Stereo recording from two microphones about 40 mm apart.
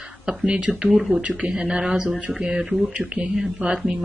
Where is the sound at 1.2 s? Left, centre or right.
Right.